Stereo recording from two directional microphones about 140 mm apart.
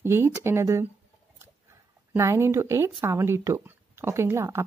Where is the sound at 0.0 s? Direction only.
15° right (ahead or behind).